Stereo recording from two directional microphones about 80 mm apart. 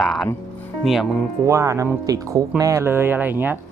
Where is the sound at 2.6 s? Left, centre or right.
Right.